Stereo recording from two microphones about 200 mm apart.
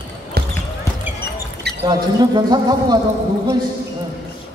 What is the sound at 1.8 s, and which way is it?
Speech, 20° right (ahead or behind).